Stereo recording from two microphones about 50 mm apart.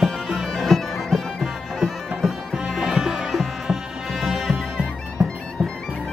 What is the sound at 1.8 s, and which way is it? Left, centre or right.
Music, centre.